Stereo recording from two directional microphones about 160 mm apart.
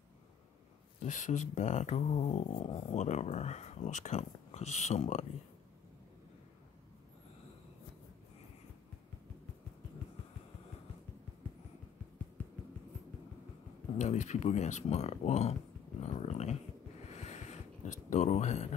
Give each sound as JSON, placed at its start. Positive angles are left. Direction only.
{"t": 0.9, "sound": "speech", "side_deg": 50}
{"t": 13.9, "sound": "speech", "side_deg": 45}
{"t": 17.1, "sound": "a sound", "side_deg": 45}
{"t": 18.1, "sound": "speech", "side_deg": 45}